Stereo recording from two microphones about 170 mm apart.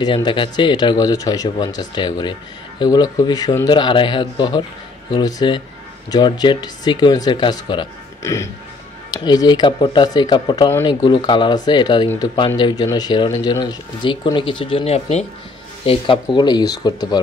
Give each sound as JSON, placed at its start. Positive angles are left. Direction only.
{"t": 0.0, "sound": "speech", "side_deg": 30}
{"t": 8.2, "sound": "music", "side_deg": 15}
{"t": 9.1, "sound": "speech", "side_deg": 25}